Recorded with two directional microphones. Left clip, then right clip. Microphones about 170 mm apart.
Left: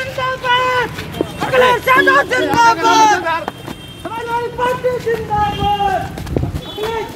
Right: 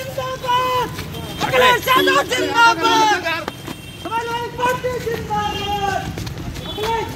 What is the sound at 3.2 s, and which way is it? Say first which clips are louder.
Speech: left 4 dB; 35° left (ahead or behind).